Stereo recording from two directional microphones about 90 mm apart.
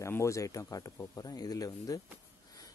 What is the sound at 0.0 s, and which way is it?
Speech, 35° left (ahead or behind).